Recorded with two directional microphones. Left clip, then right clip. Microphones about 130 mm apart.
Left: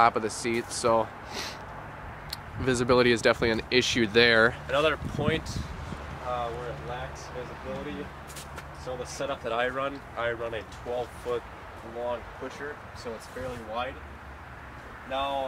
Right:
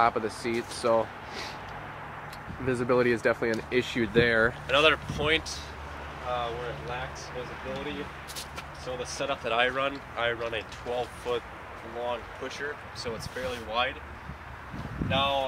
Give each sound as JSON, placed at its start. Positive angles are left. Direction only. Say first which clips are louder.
{"t": 0.0, "sound": "speech", "louder": "left 2 dB", "side_deg": 30}
{"t": 2.6, "sound": "speech", "louder": "left 2 dB", "side_deg": 30}
{"t": 4.6, "sound": "speech", "louder": "right 3 dB", "side_deg": -10}
{"t": 9.0, "sound": "speech", "louder": "right 2 dB", "side_deg": -5}
{"t": 15.0, "sound": "speech", "louder": "right 3 dB", "side_deg": -20}